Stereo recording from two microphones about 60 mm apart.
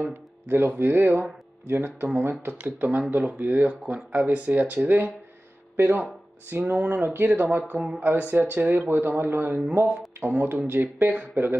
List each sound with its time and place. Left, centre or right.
0.0 s speech: right
2.5 s speech: right